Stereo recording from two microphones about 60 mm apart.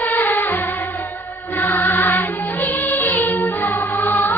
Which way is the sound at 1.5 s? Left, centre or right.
Left.